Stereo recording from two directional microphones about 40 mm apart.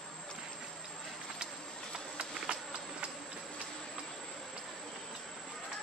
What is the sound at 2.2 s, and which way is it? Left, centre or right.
Insect, right.